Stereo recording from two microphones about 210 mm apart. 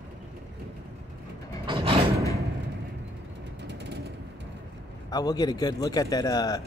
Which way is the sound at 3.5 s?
55° right (ahead or behind).